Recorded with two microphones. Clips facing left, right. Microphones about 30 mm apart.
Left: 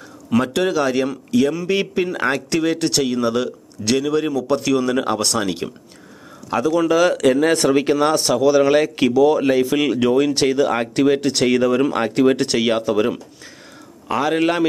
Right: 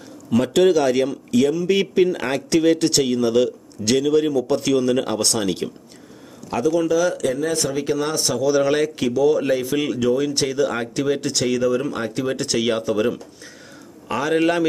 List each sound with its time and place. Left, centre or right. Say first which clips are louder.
0.3 s speech: right 2 dB; centre
6.5 s speech: left 1 dB; left
6.8 s speech: left 4 dB; left
7.7 s speech: left 6 dB; left
8.2 s speech: left 4 dB; centre
8.9 s speech: left 3 dB; left
9.9 s speech: left 3 dB; left
12.5 s speech: left 3 dB; centre